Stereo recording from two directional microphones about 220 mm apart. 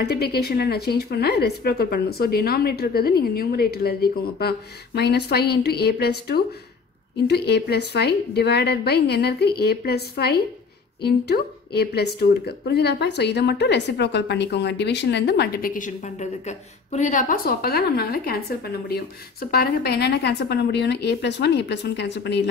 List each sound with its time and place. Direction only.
0.0 s speech: 45° left (ahead or behind)